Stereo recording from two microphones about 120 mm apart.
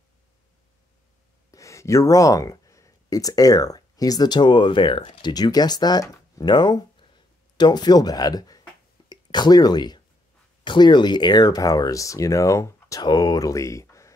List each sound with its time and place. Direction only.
1.5 s speech: 25° left (ahead or behind); by 5.3 s 45° left (ahead or behind)
5.3 s speech: 35° left (ahead or behind)